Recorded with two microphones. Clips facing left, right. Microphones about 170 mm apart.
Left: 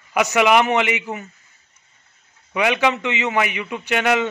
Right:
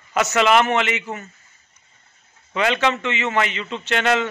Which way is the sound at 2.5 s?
15° left (ahead or behind).